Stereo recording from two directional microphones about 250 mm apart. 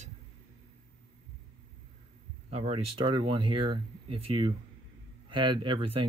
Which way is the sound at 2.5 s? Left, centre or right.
Right.